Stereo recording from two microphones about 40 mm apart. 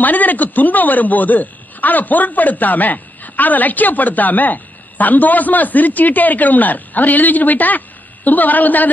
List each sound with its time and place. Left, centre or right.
0.0 s speech: left